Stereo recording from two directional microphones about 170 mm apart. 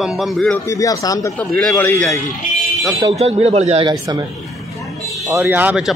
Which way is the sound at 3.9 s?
20° right (ahead or behind).